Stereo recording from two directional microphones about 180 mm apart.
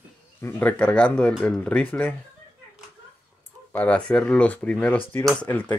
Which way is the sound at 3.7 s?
5° left (ahead or behind).